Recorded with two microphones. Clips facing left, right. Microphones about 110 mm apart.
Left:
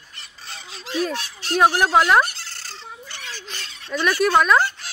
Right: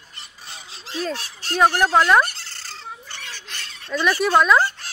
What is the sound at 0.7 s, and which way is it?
Speech, 30° right (ahead or behind).